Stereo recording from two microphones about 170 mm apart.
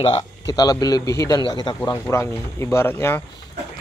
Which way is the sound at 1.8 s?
15° left (ahead or behind).